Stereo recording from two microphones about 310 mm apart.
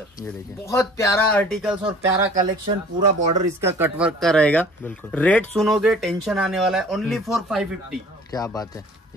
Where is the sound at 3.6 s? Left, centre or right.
Centre.